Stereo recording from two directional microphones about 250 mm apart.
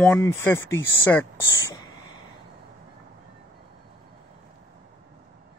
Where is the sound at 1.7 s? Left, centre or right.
Centre.